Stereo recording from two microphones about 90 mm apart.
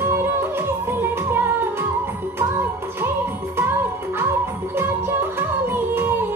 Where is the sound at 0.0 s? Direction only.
25° right (ahead or behind).